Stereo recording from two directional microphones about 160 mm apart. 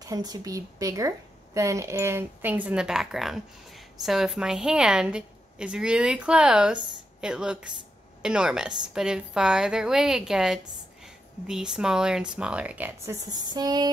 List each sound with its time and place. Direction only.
0.0 s a woman's voice: 25° right (ahead or behind)